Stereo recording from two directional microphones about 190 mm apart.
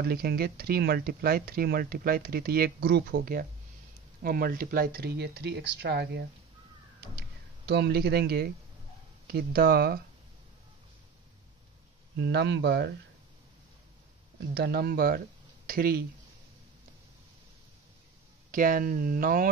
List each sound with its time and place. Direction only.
0.0 s speech: 55° right (ahead or behind)
12.2 s speech: 65° right (ahead or behind)
14.5 s speech: 55° right (ahead or behind)
18.5 s speech: 45° right (ahead or behind)